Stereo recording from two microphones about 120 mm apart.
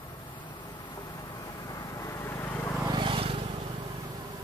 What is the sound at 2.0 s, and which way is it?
Vehicle, 25° left (ahead or behind).